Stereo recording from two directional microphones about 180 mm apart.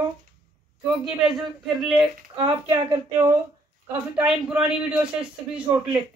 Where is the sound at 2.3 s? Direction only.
25° right (ahead or behind).